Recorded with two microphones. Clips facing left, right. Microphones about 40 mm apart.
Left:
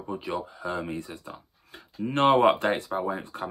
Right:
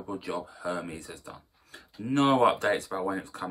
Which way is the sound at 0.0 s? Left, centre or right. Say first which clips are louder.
Left 2 dB; left.